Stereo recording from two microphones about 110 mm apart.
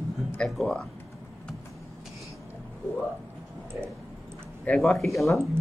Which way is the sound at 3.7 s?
20° right (ahead or behind).